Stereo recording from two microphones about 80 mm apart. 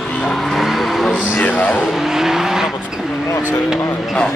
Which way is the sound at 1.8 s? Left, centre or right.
Centre.